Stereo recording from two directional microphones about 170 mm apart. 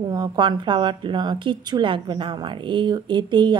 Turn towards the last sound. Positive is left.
turn(degrees=-25)  # may be behind; listen again after turning